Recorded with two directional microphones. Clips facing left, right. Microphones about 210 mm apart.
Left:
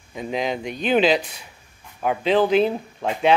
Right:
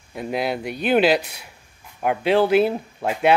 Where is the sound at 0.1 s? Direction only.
5° right (ahead or behind).